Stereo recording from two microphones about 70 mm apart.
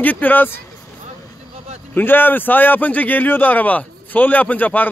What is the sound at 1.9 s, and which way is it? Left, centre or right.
A man's voice, left.